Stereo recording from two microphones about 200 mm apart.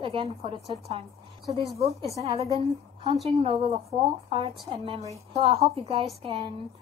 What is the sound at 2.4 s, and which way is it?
A woman's voice, 25° right (ahead or behind).